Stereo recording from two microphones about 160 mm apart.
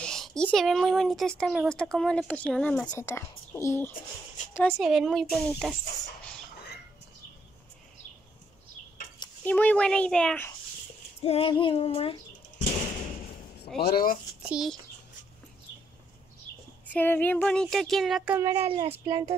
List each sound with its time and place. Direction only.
0.0 s speech: 5° left (ahead or behind)
4.6 s speech: centre (ahead or behind)
9.4 s speech: 10° left (ahead or behind)
11.2 s child singing: 35° left (ahead or behind)
13.7 s speech: 70° left (ahead or behind)
14.5 s speech: centre (ahead or behind)
16.8 s speech: 10° left (ahead or behind); by 18.5 s 10° right (ahead or behind)
18.7 s speech: 30° right (ahead or behind)